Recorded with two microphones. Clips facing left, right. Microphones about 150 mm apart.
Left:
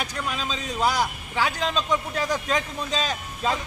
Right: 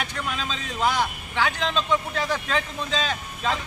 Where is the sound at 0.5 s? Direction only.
10° left (ahead or behind).